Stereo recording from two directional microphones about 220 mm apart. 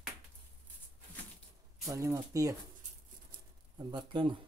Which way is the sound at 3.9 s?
20° right (ahead or behind).